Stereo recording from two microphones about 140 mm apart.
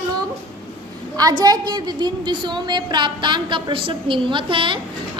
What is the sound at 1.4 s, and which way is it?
A woman's voice, 30° right (ahead or behind).